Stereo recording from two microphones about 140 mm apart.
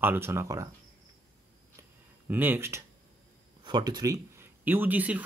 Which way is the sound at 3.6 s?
30° right (ahead or behind).